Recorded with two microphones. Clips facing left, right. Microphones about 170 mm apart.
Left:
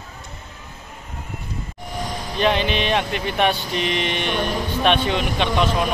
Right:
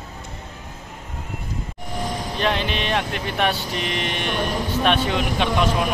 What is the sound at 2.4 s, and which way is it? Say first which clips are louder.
Speech: left 4 dB; centre (ahead or behind).